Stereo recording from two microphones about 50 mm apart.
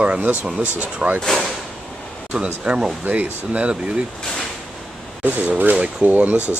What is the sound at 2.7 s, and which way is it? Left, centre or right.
Speech, right.